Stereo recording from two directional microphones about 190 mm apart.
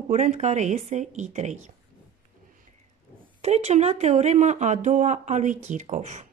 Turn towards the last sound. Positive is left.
turn(degrees=-35)  # may be behind; listen again after turning